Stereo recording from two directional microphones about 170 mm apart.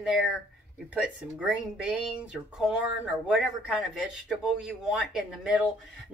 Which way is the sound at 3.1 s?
Centre (ahead or behind).